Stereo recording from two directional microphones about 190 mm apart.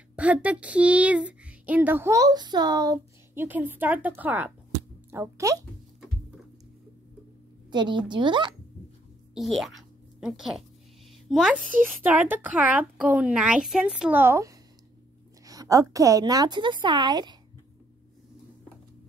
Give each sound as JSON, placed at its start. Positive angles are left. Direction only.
{"t": 0.1, "sound": "speech", "side_deg": -5}
{"t": 7.7, "sound": "a woman's voice", "side_deg": -25}
{"t": 9.3, "sound": "a woman's voice", "side_deg": 0}